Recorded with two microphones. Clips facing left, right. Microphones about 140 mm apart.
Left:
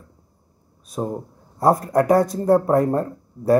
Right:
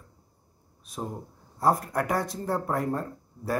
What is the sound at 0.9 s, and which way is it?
Speech, 45° left (ahead or behind).